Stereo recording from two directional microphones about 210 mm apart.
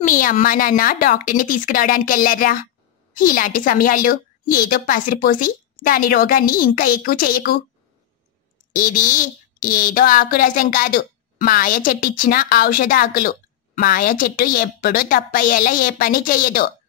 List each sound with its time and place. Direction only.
0.0 s a woman's voice: 40° left (ahead or behind)
8.7 s a woman's voice: 40° left (ahead or behind)